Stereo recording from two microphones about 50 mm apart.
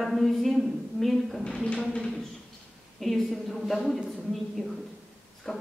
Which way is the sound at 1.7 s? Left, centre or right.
Centre.